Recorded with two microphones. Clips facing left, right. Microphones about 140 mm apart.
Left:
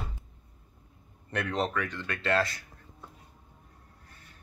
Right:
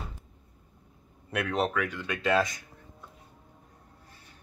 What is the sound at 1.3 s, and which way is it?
Speech, 5° right (ahead or behind).